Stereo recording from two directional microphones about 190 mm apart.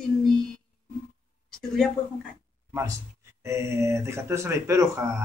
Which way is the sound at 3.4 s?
15° right (ahead or behind).